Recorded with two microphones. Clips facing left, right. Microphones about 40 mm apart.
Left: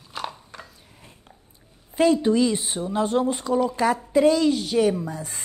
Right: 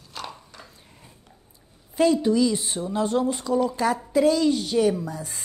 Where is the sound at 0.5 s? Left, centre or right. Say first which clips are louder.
Left 4 dB; left.